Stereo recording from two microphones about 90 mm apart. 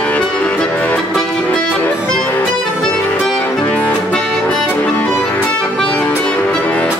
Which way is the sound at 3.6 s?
15° left (ahead or behind).